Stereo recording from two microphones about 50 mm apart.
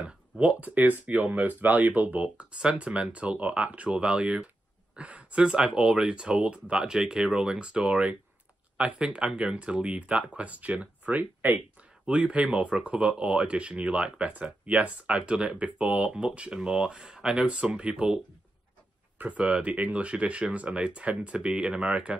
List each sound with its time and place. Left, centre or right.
0.0 s speech: right
12.1 s speech: right
19.1 s speech: right